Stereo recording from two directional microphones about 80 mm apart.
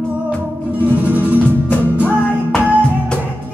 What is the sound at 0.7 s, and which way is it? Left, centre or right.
Music, right.